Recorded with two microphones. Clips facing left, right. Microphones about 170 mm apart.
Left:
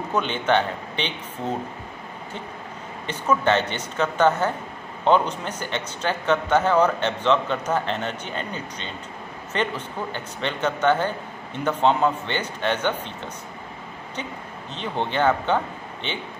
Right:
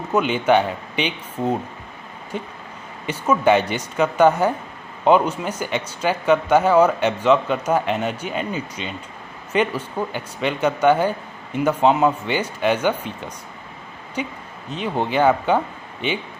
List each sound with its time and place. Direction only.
0.1 s speech: 10° right (ahead or behind)
3.1 s speech: 10° right (ahead or behind)
14.2 s speech: 10° right (ahead or behind)